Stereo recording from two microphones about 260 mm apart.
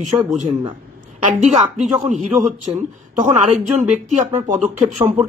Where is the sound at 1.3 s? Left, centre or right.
Right.